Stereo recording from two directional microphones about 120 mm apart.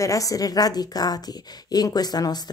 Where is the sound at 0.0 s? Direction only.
30° left (ahead or behind).